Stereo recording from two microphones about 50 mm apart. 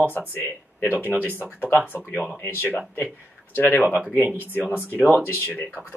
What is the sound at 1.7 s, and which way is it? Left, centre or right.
Speech, left.